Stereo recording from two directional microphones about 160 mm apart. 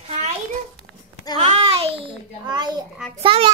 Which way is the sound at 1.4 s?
40° right (ahead or behind).